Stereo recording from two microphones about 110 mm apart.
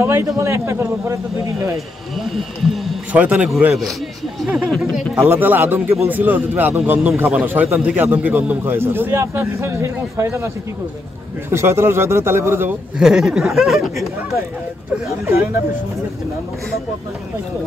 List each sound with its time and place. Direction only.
0.0 s a man's voice: 25° right (ahead or behind)
2.1 s speech: centre (ahead or behind)
3.1 s speech: 10° right (ahead or behind)
4.5 s speech: 5° right (ahead or behind)
5.2 s a man's voice: 20° right (ahead or behind)
11.5 s a man's voice: 25° right (ahead or behind)
13.0 s speech: 5° right (ahead or behind)
15.0 s a man's voice: 25° right (ahead or behind)